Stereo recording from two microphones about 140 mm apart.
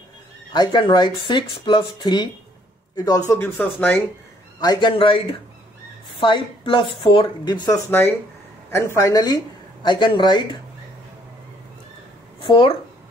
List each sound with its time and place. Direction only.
0.5 s speech: 30° left (ahead or behind)
3.3 s speech: 15° left (ahead or behind)
4.6 s speech: 30° left (ahead or behind)
7.6 s speech: 20° left (ahead or behind); by 10.6 s 35° left (ahead or behind)
12.4 s speech: 35° left (ahead or behind)